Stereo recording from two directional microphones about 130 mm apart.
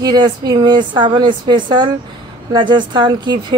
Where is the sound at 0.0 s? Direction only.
35° right (ahead or behind).